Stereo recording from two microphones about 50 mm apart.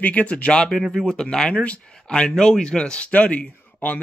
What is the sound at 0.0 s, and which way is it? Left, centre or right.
Speech, left.